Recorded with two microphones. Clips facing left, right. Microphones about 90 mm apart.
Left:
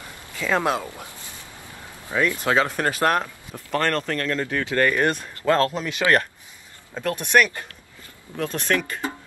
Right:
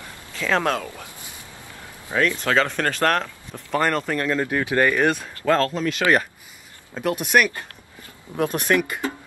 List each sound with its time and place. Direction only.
0.4 s speech: 10° left (ahead or behind)
2.1 s speech: 15° left (ahead or behind)
3.7 s speech: 5° right (ahead or behind)
5.3 s speech: 15° left (ahead or behind)
7.0 s speech: 10° right (ahead or behind)